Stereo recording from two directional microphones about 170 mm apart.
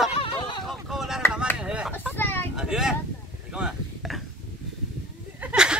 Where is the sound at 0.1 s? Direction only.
30° left (ahead or behind).